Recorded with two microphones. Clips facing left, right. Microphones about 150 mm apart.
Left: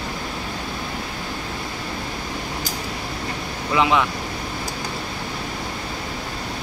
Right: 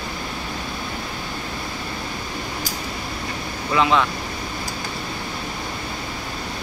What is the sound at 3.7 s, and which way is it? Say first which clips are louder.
Speech: even; 15° left (ahead or behind).